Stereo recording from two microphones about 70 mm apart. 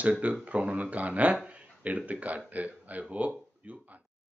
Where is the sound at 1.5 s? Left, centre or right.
Centre.